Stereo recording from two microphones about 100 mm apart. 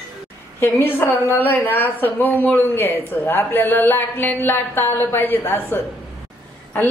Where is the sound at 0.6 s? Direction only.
20° left (ahead or behind).